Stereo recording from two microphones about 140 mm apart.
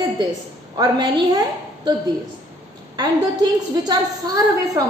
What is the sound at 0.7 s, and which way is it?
Speech, 30° right (ahead or behind).